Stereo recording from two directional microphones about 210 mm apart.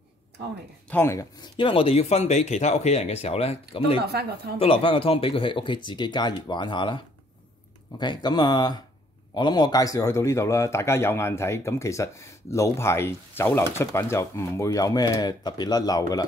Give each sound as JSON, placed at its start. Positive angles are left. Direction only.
{"t": 0.8, "sound": "speech", "side_deg": 10}
{"t": 4.0, "sound": "speech", "side_deg": -50}
{"t": 4.6, "sound": "speech", "side_deg": 25}
{"t": 8.0, "sound": "a man's voice", "side_deg": 20}